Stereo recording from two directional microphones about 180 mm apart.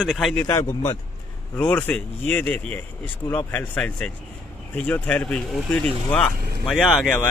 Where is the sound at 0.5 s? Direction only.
20° left (ahead or behind).